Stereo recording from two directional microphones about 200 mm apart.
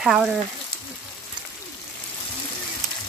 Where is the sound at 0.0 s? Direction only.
Centre (ahead or behind).